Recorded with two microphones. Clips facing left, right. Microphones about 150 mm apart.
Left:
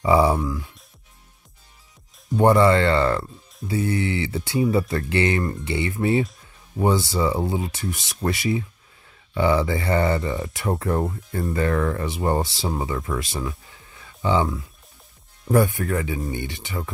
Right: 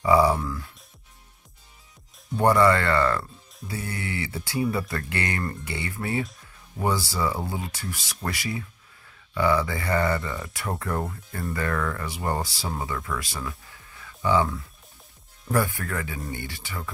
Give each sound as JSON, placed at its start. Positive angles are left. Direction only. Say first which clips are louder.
{"t": 0.0, "sound": "speech", "louder": "left 2 dB", "side_deg": 25}
{"t": 0.4, "sound": "speech", "louder": "left 5 dB", "side_deg": 10}
{"t": 2.3, "sound": "speech", "louder": "left 3 dB", "side_deg": 25}
{"t": 15.5, "sound": "speech", "louder": "left 6 dB", "side_deg": 20}